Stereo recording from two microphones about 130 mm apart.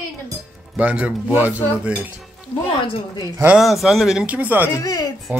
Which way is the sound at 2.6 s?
45° left (ahead or behind).